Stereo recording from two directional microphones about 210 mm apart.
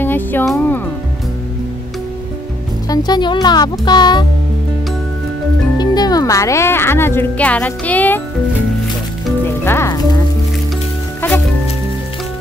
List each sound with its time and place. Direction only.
0.0 s music: 10° left (ahead or behind)
2.9 s speech: 20° left (ahead or behind)
5.8 s speech: 20° left (ahead or behind)
9.7 s music: 10° left (ahead or behind)
11.1 s music: 10° left (ahead or behind)